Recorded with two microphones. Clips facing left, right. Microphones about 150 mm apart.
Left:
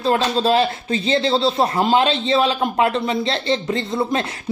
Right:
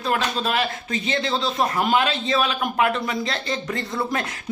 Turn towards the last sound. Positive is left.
turn(degrees=25)  # may be behind; listen again after turning